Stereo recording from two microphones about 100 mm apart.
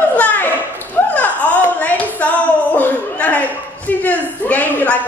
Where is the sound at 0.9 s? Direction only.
15° left (ahead or behind).